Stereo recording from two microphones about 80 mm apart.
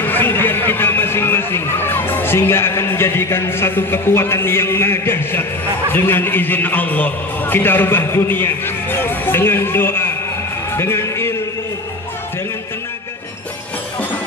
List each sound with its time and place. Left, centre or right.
0.0 s a sound: left
5.9 s a man's voice: left
10.8 s music: left